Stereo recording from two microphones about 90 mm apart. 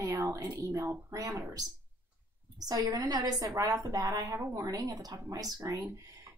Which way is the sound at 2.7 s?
45° right (ahead or behind).